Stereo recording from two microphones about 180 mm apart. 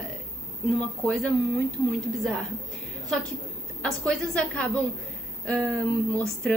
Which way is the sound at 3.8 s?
5° left (ahead or behind).